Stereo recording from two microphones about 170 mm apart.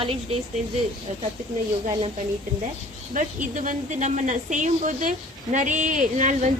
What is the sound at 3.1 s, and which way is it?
Speech, 50° right (ahead or behind).